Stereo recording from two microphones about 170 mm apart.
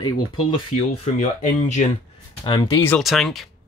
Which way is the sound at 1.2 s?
45° left (ahead or behind).